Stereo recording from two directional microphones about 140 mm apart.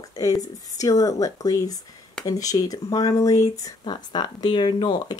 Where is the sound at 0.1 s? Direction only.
25° left (ahead or behind).